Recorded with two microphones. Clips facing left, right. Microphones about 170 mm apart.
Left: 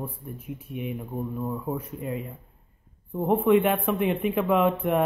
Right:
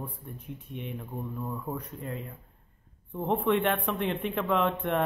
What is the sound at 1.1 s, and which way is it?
Speech, 20° left (ahead or behind).